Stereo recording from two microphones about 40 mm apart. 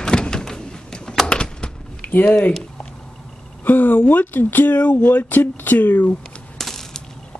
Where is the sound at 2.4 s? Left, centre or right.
Centre.